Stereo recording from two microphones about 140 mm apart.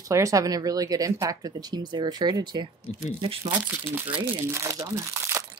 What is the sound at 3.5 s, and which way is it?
Speech, 10° right (ahead or behind).